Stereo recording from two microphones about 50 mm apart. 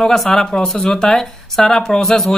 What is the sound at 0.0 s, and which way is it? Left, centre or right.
Speech, centre.